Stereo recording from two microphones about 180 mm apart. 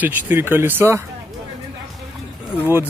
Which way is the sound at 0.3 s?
10° right (ahead or behind).